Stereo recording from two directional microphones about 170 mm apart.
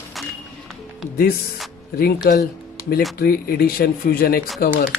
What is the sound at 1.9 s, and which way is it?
Speech, 60° left (ahead or behind).